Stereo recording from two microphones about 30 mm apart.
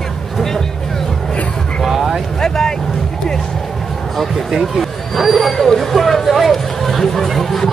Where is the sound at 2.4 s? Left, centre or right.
Centre.